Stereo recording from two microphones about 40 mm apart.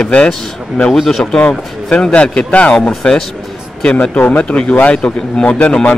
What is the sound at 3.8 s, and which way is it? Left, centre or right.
Speech, left.